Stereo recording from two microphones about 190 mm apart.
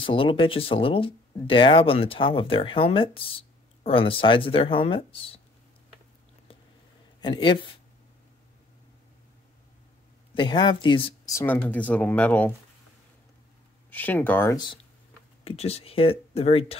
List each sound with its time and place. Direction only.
0.0 s speech: 25° left (ahead or behind)
7.2 s speech: 25° left (ahead or behind)
10.3 s speech: 25° left (ahead or behind)
11.3 s speech: 10° left (ahead or behind)
13.8 s speech: 10° left (ahead or behind)
15.4 s speech: 35° left (ahead or behind)